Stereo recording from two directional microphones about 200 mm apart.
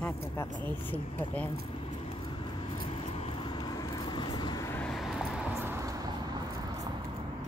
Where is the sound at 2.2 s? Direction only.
25° left (ahead or behind); by 5.5 s centre (ahead or behind).